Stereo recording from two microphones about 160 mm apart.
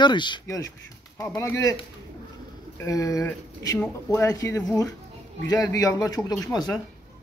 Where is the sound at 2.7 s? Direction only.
20° left (ahead or behind).